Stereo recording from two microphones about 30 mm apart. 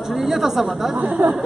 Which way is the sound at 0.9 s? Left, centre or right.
Right.